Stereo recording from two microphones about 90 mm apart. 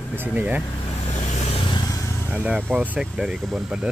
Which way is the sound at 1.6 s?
60° left (ahead or behind).